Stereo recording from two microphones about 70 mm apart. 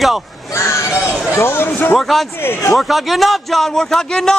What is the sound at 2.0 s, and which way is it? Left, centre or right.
A man's voice, centre.